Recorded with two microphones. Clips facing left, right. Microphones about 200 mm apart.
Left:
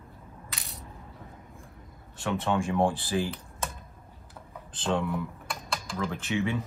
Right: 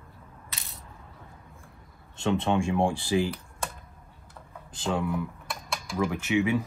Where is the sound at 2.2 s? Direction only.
20° right (ahead or behind).